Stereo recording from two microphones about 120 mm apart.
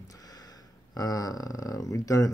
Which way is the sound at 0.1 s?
30° left (ahead or behind).